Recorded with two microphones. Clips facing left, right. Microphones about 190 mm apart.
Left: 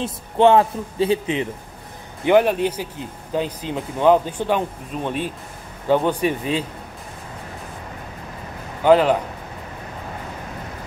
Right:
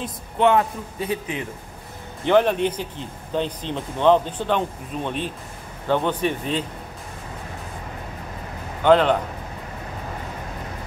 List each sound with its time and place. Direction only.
0.0 s a man's voice: 30° left (ahead or behind)
2.2 s speech: 10° left (ahead or behind)
8.8 s speech: 5° left (ahead or behind)